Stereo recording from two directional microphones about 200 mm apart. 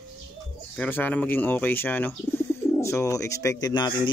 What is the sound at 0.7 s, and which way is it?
Speech, 10° left (ahead or behind).